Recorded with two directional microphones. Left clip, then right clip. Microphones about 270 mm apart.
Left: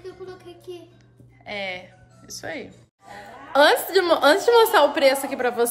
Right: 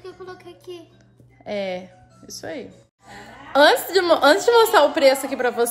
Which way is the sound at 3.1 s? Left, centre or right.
Centre.